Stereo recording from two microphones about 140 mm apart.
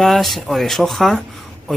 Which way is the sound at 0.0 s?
Centre (ahead or behind).